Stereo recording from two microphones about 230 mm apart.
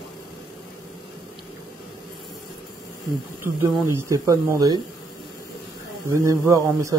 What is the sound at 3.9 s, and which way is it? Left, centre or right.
Speech, centre.